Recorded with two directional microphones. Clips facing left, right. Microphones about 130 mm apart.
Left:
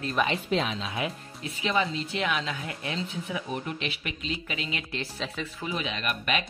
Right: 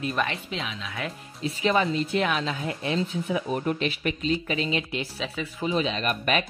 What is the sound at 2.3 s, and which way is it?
Speech, 30° right (ahead or behind).